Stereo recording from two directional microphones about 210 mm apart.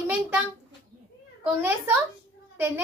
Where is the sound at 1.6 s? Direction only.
10° right (ahead or behind).